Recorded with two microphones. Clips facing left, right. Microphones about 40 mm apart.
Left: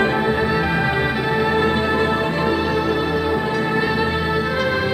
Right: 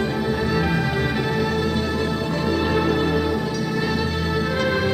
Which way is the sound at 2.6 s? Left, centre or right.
Centre.